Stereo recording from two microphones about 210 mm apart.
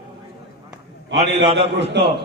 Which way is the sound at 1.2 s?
25° right (ahead or behind).